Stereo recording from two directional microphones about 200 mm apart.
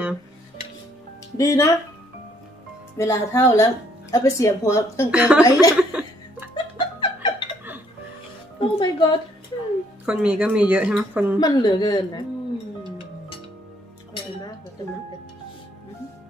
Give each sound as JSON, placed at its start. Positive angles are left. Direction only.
{"t": 1.4, "sound": "speech", "side_deg": 15}
{"t": 3.0, "sound": "speech", "side_deg": 15}
{"t": 5.1, "sound": "speech", "side_deg": -5}
{"t": 5.4, "sound": "speech", "side_deg": 15}
{"t": 5.8, "sound": "chuckle", "side_deg": -5}
{"t": 6.5, "sound": "laughter", "side_deg": 25}
{"t": 8.5, "sound": "music", "side_deg": 25}
{"t": 10.0, "sound": "speech", "side_deg": -5}
{"t": 11.3, "sound": "a woman's voice", "side_deg": 20}